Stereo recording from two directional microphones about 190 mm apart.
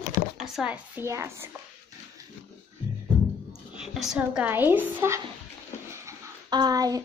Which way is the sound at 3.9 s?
5° right (ahead or behind).